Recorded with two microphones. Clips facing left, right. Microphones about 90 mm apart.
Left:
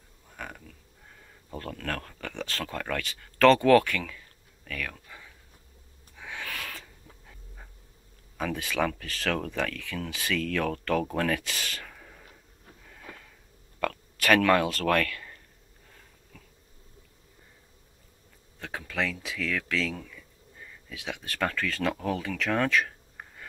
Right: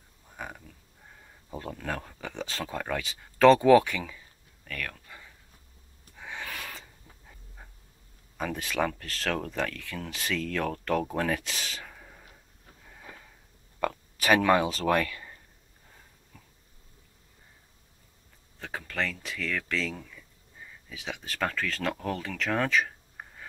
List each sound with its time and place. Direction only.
0.4 s a sound: 15° right (ahead or behind)
1.2 s speech: 10° right (ahead or behind)
4.6 s a sound: centre (ahead or behind)
6.1 s dog: 5° right (ahead or behind)
8.4 s speech: 5° right (ahead or behind)
12.9 s sniff: 15° right (ahead or behind)
13.7 s speech: 15° right (ahead or behind)
16.3 s a sound: 20° right (ahead or behind)
18.6 s speech: centre (ahead or behind)